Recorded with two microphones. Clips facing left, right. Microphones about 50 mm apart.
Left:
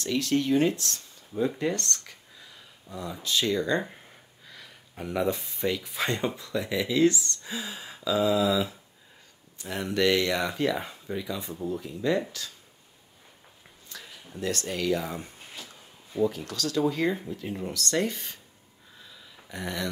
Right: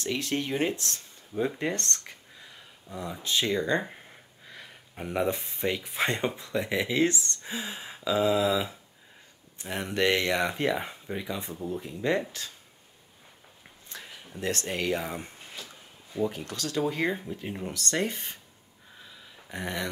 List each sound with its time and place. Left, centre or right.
0.0 s speech: right
2.9 s speech: right
13.8 s a sound: right
14.4 s speech: right
16.3 s speech: right
19.5 s speech: right